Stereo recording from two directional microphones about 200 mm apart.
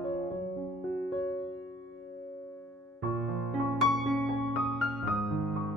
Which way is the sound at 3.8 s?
Centre (ahead or behind).